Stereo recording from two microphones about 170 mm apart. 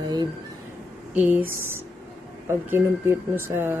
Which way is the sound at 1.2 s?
10° right (ahead or behind).